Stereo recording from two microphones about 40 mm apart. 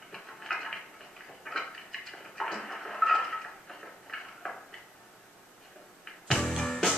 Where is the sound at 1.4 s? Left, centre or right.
Centre.